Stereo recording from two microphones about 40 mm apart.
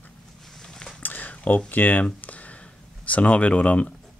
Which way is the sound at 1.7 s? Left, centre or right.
Left.